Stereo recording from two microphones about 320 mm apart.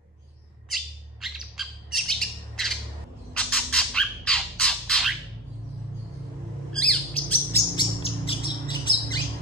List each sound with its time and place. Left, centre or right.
0.7 s bird: centre
3.3 s squawk: centre
6.7 s bird: centre
8.3 s squawk: centre